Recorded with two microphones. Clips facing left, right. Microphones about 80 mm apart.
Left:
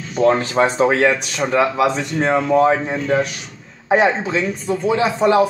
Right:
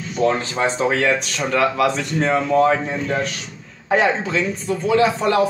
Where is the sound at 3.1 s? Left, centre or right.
Centre.